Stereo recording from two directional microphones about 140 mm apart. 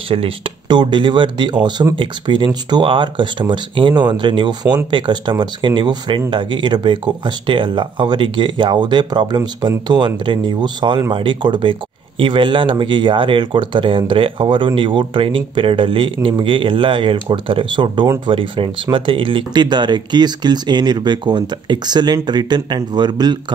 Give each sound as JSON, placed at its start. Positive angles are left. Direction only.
{"t": 0.1, "sound": "speech", "side_deg": -40}